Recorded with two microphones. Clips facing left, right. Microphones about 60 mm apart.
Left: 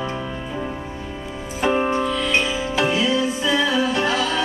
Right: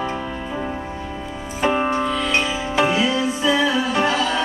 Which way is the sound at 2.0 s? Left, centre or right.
Centre.